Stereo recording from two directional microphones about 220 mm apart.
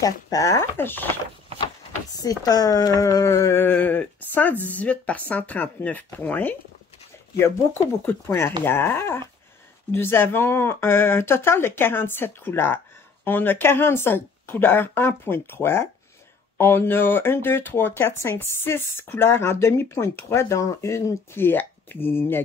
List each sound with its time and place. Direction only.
0.0 s speech: 15° left (ahead or behind)
1.5 s a sound: 25° right (ahead or behind)
2.1 s speech: 15° left (ahead or behind)